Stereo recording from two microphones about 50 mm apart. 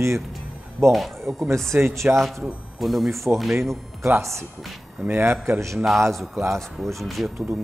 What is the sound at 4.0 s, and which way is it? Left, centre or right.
Speech, right.